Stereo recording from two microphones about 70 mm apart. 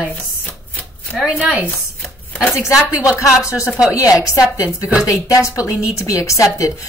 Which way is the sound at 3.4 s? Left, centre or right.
Left.